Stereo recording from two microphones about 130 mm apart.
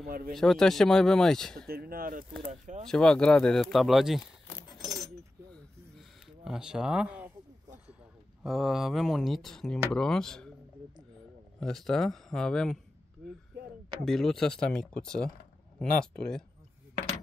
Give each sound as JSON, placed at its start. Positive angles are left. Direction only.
{"t": 0.3, "sound": "speech", "side_deg": 0}
{"t": 2.0, "sound": "speech", "side_deg": -90}
{"t": 2.9, "sound": "speech", "side_deg": 5}
{"t": 4.7, "sound": "keys jangling", "side_deg": 0}
{"t": 5.9, "sound": "a sound", "side_deg": -5}
{"t": 8.5, "sound": "speech", "side_deg": 0}
{"t": 11.6, "sound": "speech", "side_deg": 5}